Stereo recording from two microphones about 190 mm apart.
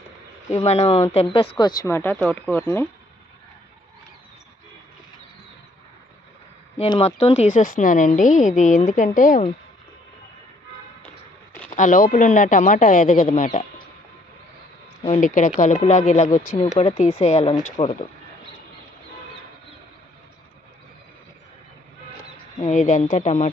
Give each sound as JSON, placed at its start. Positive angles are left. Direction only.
{"t": 0.5, "sound": "a woman's voice", "side_deg": 35}
{"t": 6.8, "sound": "a woman's voice", "side_deg": 30}
{"t": 11.7, "sound": "speech", "side_deg": 45}
{"t": 15.0, "sound": "a woman's voice", "side_deg": 40}
{"t": 22.6, "sound": "a woman's voice", "side_deg": 40}